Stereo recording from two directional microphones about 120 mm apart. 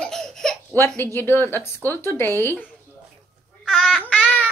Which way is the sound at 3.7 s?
Centre (ahead or behind).